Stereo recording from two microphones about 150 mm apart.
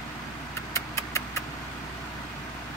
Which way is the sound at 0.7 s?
20° left (ahead or behind).